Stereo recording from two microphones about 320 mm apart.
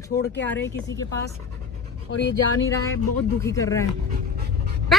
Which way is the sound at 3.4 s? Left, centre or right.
Centre.